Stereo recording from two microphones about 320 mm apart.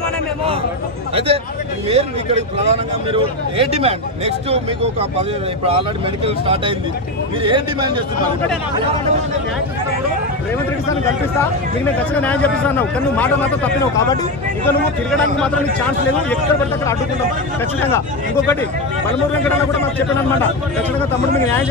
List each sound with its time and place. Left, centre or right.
1.1 s speech: centre
6.2 s speech: centre
11.8 s a man's voice: centre